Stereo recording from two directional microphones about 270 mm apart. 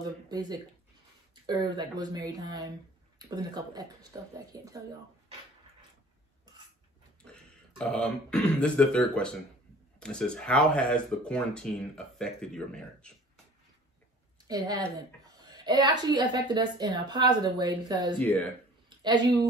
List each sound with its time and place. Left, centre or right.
0.3 s speech: centre
7.2 s speech: centre
14.5 s a woman's voice: centre
18.2 s speech: centre
18.9 s speech: centre